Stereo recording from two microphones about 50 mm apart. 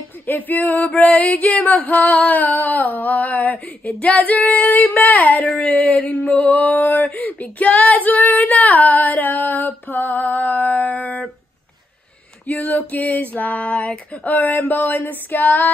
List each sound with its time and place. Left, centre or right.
0.3 s female singing: left
6.8 s a sound: left
7.1 s female singing: left
12.4 s female singing: left